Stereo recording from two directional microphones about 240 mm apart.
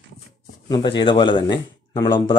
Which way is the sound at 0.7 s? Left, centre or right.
Centre.